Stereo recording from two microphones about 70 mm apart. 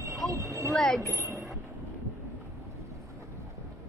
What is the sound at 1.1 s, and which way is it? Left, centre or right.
Speech, right.